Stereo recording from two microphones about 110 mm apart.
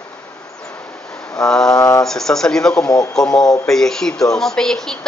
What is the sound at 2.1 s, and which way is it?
A woman's voice, 5° left (ahead or behind).